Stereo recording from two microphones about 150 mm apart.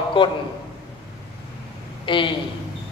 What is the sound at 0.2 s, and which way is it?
Speech, 35° left (ahead or behind).